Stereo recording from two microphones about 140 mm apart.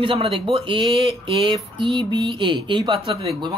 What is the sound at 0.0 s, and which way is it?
Speech, 40° right (ahead or behind).